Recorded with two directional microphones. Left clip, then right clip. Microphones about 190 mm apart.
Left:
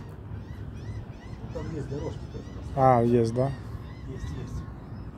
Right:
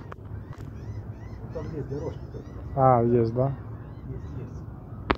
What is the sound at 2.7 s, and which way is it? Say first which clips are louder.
Speech: right 1 dB; 10° left (ahead or behind).